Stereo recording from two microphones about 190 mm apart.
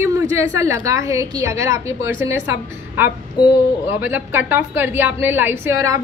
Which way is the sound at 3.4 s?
25° left (ahead or behind).